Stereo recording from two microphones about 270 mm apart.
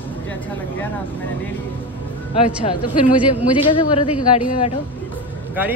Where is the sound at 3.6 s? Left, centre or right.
Centre.